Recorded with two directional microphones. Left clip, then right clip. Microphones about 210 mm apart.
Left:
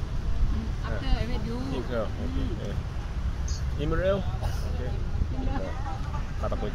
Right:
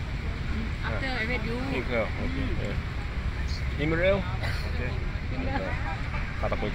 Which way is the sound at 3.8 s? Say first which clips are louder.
Right 2 dB; 10° right (ahead or behind).